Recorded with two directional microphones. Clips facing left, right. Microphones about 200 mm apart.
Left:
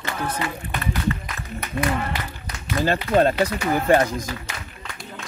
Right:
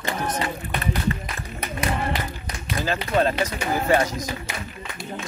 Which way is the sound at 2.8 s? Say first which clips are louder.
Left 4 dB; 40° left (ahead or behind).